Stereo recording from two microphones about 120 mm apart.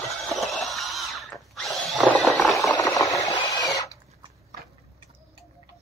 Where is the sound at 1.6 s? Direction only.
Centre (ahead or behind).